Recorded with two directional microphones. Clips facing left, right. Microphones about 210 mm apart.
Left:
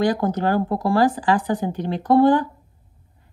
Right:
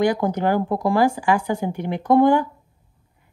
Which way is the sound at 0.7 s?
15° right (ahead or behind).